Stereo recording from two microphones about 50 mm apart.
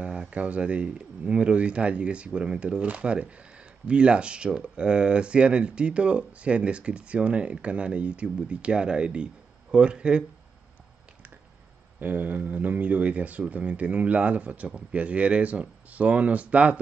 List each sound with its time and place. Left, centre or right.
0.0 s speech: right
12.0 s speech: right